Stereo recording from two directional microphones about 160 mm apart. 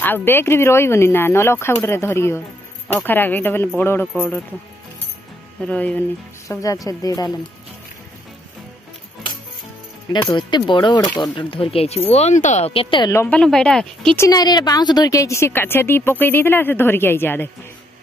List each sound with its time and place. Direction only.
0.0 s a woman's voice: 15° left (ahead or behind)
5.6 s a woman's voice: 10° left (ahead or behind)
6.4 s a woman's voice: 20° left (ahead or behind)
10.3 s a woman's voice: 30° left (ahead or behind)
13.1 s speech: 10° left (ahead or behind)
14.1 s a woman's voice: 20° left (ahead or behind)